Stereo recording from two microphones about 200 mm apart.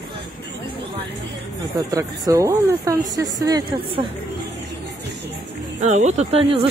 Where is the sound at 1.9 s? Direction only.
15° right (ahead or behind).